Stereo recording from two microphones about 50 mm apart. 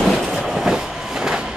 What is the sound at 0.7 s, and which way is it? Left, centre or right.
Vehicle, centre.